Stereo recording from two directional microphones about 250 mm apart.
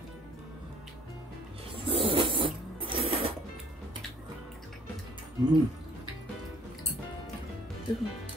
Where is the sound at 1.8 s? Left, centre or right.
Right.